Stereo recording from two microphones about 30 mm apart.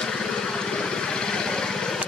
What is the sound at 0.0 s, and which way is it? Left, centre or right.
Vehicle, left.